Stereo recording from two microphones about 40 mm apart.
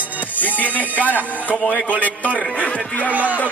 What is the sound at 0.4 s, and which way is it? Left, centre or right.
Speech, left.